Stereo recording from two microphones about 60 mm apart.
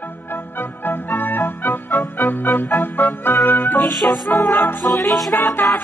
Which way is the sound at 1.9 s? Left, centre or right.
Centre.